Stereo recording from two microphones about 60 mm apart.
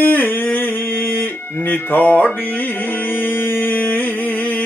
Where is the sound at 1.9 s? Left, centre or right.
Left.